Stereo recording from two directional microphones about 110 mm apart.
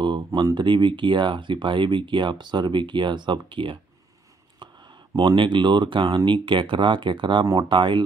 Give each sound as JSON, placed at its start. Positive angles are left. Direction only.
{"t": 0.0, "sound": "speech", "side_deg": -40}
{"t": 4.6, "sound": "a sound", "side_deg": -45}
{"t": 5.1, "sound": "speech", "side_deg": -45}